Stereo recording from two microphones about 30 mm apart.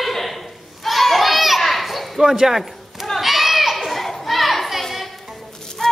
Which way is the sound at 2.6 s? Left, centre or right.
Centre.